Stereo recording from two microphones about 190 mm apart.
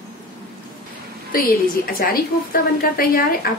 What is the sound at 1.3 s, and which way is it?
A woman's voice, 50° left (ahead or behind).